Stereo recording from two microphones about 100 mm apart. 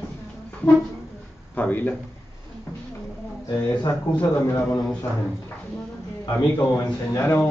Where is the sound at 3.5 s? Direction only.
40° left (ahead or behind).